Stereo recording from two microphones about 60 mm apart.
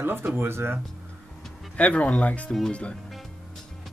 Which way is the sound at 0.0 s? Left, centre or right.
Right.